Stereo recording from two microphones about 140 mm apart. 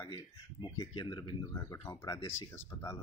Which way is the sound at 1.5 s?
20° left (ahead or behind).